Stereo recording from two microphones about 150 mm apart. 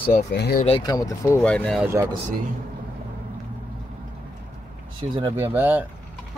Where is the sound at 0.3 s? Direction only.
90° left.